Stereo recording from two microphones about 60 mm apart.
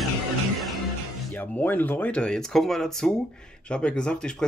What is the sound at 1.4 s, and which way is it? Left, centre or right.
Speech, left.